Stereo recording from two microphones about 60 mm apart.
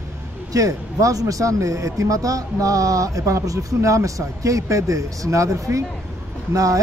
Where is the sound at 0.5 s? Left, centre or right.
Right.